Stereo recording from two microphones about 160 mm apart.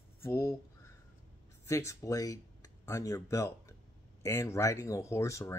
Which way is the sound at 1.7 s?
20° left (ahead or behind).